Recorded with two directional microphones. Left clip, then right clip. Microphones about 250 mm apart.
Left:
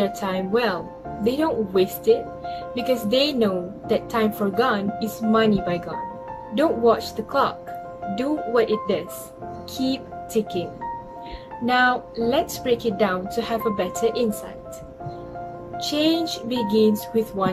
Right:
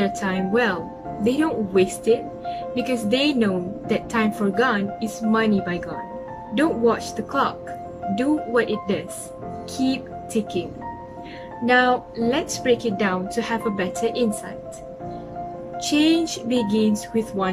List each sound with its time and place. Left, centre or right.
0.0 s a woman's voice: centre
12.4 s a woman's voice: right
12.8 s a woman's voice: centre
15.9 s a woman's voice: centre